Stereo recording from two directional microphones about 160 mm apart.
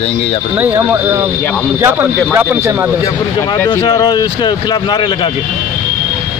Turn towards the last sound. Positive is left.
turn(degrees=25)  # may be behind; listen again after turning